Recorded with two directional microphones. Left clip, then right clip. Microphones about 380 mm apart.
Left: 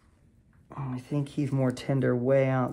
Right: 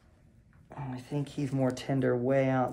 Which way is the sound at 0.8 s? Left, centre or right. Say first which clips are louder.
Left 3 dB; centre.